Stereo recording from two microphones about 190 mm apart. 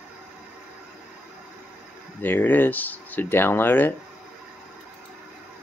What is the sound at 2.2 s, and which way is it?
Speech, 10° left (ahead or behind).